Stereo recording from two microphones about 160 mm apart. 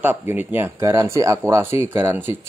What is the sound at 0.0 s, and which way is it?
Speech, 10° right (ahead or behind).